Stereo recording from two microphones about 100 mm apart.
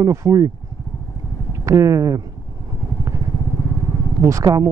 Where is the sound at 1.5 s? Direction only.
30° right (ahead or behind).